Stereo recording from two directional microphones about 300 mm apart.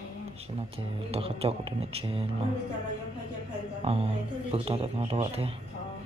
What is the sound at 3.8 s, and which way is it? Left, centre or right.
A man's voice, centre.